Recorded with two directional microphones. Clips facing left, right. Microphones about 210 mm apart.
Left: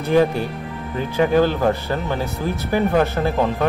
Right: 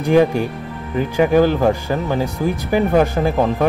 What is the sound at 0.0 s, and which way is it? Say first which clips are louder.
Speech: right 3 dB; 15° right (ahead or behind).